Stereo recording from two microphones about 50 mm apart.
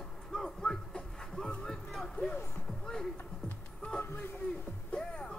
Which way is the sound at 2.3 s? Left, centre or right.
Left.